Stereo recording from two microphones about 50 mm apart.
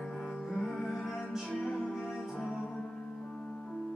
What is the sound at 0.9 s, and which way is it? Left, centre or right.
Music, centre.